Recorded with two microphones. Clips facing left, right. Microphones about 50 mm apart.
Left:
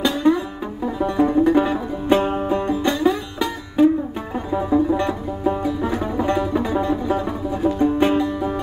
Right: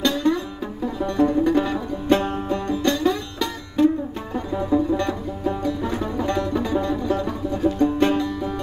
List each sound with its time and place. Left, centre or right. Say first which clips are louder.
0.0 s music: left 3 dB; centre